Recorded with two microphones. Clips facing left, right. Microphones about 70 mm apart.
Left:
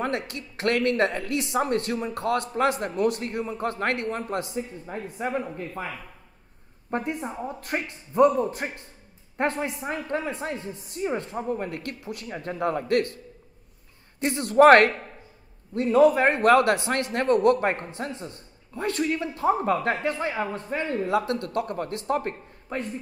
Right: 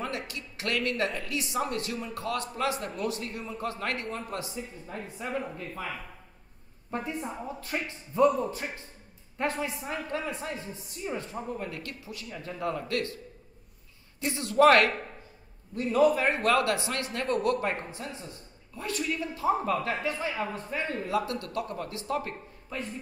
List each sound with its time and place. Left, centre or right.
0.0 s a man's voice: left
6.9 s a man's voice: left
10.2 s a man's voice: left
14.2 s a man's voice: left
21.0 s a man's voice: left
21.3 s a man's voice: left